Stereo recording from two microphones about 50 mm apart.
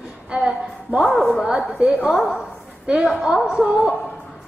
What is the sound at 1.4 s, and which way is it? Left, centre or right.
Speech, centre.